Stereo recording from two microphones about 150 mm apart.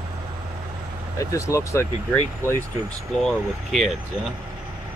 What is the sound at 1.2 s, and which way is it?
Speech, 20° left (ahead or behind).